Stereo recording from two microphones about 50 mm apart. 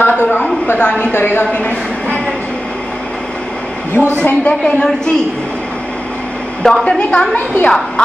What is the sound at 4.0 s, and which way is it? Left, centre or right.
A woman's voice, left.